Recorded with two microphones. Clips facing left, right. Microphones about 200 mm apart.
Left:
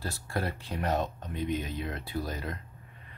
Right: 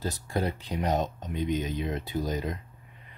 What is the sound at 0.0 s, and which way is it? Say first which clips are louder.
Speech: right 4 dB; 20° right (ahead or behind).